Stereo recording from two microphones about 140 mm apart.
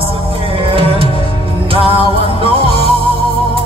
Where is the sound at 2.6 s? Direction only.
40° left (ahead or behind).